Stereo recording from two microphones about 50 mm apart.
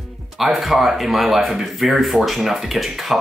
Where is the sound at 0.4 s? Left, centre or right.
Centre.